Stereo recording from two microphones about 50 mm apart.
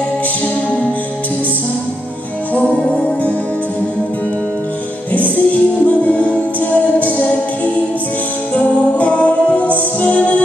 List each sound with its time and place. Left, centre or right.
2.8 s music: left
5.1 s music: left